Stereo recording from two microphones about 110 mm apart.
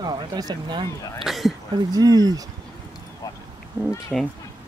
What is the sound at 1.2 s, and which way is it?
Speech, centre (ahead or behind).